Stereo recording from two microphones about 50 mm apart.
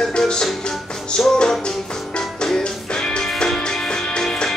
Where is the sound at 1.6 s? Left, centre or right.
Centre.